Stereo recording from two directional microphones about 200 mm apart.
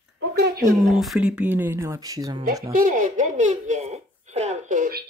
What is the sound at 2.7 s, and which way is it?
Speech, 45° right (ahead or behind).